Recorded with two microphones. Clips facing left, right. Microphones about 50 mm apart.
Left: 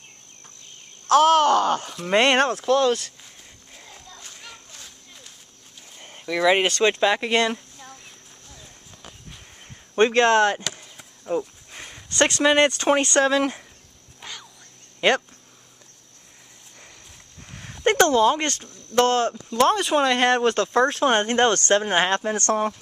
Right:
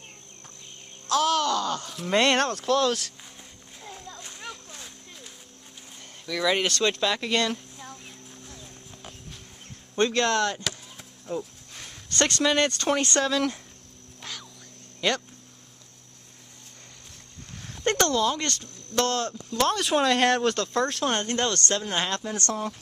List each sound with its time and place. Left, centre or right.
1.0 s speech: left
2.0 s speech: left
4.2 s children playing: centre
4.7 s a sound: centre
5.9 s speech: left
8.5 s clip-clop: centre
9.9 s speech: left
11.2 s a sound: left
12.1 s speech: centre
13.2 s speech: left
14.2 s a sound: centre
15.0 s speech: left
17.8 s speech: centre